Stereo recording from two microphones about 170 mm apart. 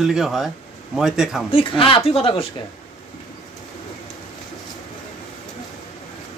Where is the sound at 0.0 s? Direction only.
Centre (ahead or behind).